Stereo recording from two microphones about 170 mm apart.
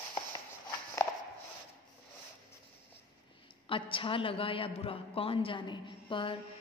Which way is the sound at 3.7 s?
30° left (ahead or behind).